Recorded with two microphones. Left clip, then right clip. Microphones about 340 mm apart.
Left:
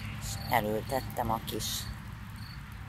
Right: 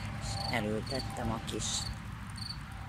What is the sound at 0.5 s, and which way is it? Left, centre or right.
Cricket, centre.